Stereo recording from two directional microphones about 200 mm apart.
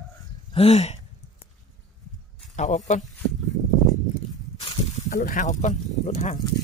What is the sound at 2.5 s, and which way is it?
Speech, 35° left (ahead or behind).